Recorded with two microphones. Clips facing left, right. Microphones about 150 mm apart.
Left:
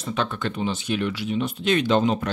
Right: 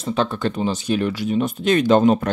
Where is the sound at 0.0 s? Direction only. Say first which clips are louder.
Right 5 dB; 35° right (ahead or behind).